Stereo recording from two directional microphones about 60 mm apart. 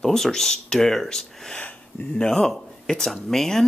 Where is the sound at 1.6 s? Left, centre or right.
Left.